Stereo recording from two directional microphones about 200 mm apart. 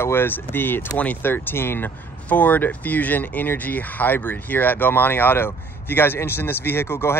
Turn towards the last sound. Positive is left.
turn(degrees=10)  # may be behind; listen again after turning